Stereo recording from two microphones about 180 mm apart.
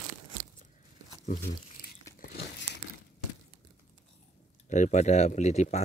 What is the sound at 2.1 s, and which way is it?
Crumpling, 60° left (ahead or behind).